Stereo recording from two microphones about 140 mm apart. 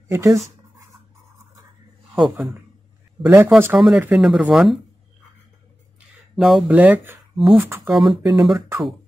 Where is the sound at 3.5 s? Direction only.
15° right (ahead or behind).